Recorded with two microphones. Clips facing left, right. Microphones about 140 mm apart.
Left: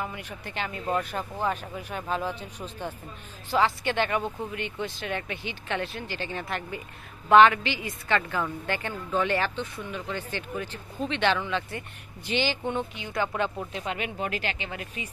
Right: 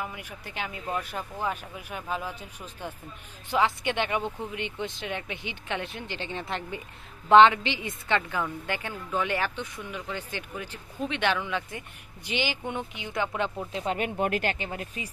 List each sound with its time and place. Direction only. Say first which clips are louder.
0.0 s a woman's voice: left 2 dB; 10° right (ahead or behind)
13.7 s speech: right 3 dB; 30° right (ahead or behind)
13.9 s speech: right 6 dB; 50° right (ahead or behind)